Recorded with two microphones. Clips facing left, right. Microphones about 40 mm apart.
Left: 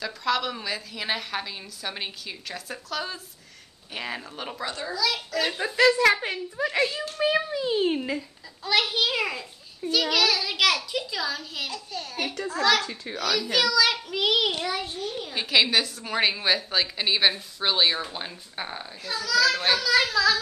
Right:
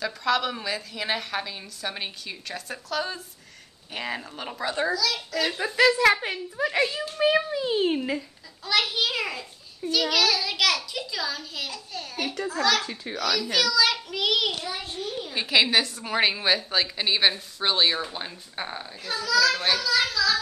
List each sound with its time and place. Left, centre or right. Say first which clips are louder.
0.0 s a child's voice: right 1 dB; centre
14.9 s a child's voice: even; centre
20.0 s speech: left 2 dB; centre